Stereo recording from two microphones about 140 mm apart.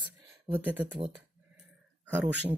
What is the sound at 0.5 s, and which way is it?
Speech, 10° right (ahead or behind).